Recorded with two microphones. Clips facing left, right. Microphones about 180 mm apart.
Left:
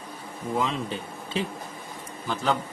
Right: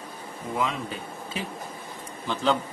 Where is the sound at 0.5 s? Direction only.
30° left (ahead or behind).